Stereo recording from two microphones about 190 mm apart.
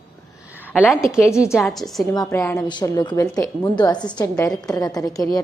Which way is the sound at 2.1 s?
15° left (ahead or behind).